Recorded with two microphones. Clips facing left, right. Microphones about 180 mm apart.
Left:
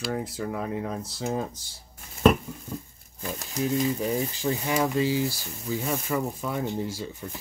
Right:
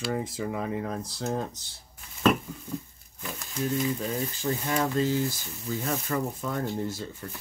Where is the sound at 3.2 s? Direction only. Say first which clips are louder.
Left 4 dB; 40° left (ahead or behind).